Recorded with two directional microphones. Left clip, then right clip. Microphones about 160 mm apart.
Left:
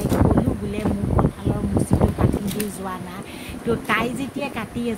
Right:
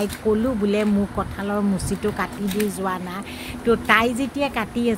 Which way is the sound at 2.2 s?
20° right (ahead or behind).